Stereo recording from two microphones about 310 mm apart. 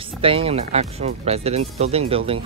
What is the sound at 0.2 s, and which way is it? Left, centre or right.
Speech, centre.